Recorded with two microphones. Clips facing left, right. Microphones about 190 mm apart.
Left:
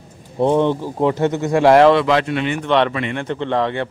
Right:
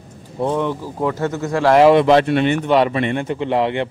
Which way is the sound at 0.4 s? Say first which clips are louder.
Left 4 dB; 25° left (ahead or behind).